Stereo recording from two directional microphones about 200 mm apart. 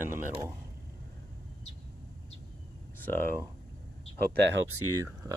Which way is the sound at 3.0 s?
10° left (ahead or behind).